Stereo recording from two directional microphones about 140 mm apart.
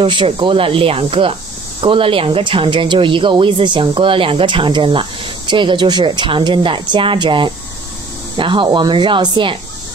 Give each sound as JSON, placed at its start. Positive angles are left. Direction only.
{"t": 0.0, "sound": "speech", "side_deg": -35}